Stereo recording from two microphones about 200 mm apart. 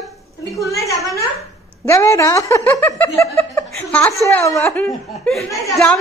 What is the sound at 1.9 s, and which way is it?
Speech, 15° left (ahead or behind).